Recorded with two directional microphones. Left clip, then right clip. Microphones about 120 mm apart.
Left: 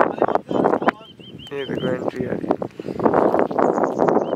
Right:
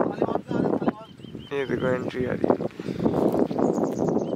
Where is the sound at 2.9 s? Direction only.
45° left (ahead or behind).